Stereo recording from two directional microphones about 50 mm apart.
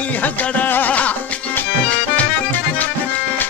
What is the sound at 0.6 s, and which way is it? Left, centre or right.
Music, left.